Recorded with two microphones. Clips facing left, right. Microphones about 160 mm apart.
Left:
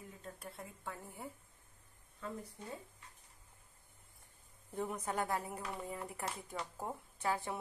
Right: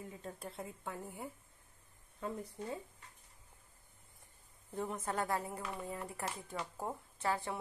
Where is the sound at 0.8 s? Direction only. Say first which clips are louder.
Right 1 dB; 15° right (ahead or behind).